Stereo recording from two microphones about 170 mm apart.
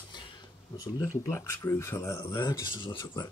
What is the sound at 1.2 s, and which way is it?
Speech, 15° left (ahead or behind).